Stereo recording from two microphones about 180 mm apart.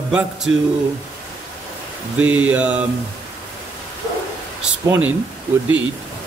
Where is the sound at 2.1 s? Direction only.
10° right (ahead or behind).